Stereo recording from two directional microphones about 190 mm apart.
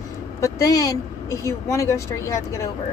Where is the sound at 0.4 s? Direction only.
15° left (ahead or behind).